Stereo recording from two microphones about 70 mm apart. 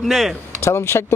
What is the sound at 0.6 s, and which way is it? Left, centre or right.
Speech, left.